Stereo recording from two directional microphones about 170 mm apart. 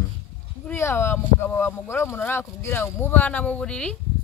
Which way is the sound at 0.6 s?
15° left (ahead or behind).